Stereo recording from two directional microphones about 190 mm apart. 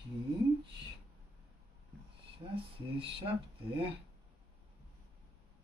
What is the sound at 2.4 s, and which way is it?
Speech, 30° right (ahead or behind).